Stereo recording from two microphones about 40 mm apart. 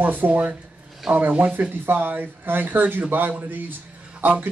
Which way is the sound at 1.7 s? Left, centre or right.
Right.